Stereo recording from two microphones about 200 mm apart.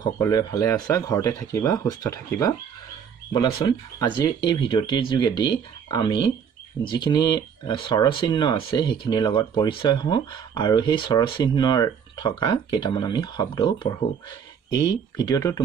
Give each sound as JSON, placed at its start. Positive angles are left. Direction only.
{"t": 0.0, "sound": "speech", "side_deg": 20}